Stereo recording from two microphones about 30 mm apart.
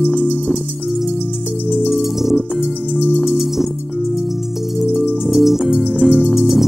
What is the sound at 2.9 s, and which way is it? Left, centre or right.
Music, right.